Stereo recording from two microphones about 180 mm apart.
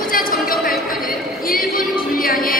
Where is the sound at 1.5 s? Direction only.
50° left (ahead or behind).